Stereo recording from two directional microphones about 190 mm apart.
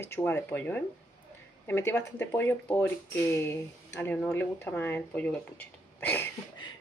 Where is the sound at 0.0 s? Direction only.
10° left (ahead or behind).